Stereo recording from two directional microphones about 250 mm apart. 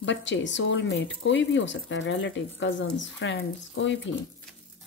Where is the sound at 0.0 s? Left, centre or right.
Left.